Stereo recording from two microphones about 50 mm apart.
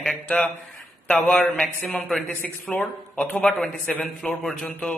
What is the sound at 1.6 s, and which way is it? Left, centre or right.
A man's voice, left.